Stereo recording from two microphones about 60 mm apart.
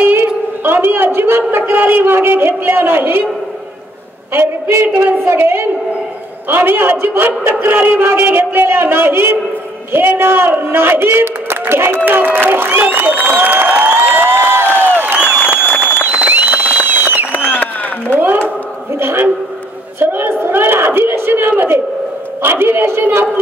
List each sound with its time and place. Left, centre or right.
0.7 s a man's voice: right
4.3 s a woman's voice: right
13.6 s a sound: right
15.1 s crowd: centre
15.6 s applause: left
16.1 s a sound: right
22.4 s a man's voice: right